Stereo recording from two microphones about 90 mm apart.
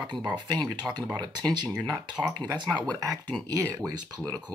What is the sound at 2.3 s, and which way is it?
Speech, 50° right (ahead or behind).